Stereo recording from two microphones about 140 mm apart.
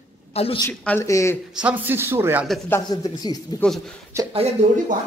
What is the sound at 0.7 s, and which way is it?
Speech, 15° left (ahead or behind).